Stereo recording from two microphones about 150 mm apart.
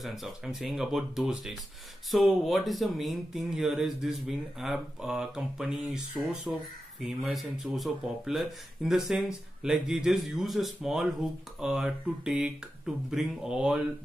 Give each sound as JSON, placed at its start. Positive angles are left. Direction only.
{"t": 0.0, "sound": "speech", "side_deg": 0}